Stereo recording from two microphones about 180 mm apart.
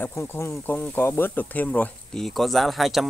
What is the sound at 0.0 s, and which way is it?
Speech, 15° left (ahead or behind).